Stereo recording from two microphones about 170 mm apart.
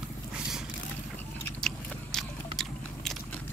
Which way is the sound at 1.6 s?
5° left (ahead or behind).